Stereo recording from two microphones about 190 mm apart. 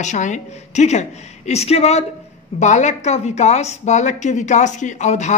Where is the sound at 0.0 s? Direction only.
40° left (ahead or behind).